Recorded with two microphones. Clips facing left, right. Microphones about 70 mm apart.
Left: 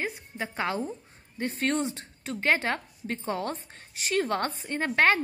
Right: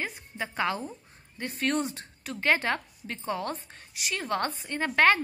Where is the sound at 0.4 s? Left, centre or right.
Left.